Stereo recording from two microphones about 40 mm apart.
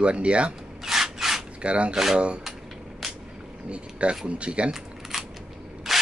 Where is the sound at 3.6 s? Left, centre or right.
Right.